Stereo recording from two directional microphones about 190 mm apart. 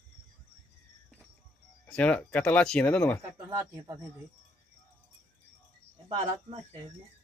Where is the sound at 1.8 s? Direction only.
5° left (ahead or behind).